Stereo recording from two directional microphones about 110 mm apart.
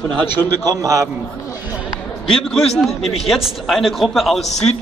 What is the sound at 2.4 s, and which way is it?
A man's voice, centre (ahead or behind).